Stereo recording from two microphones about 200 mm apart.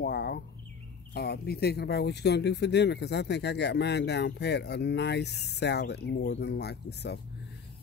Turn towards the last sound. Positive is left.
turn(degrees=55)  # may be behind; listen again after turning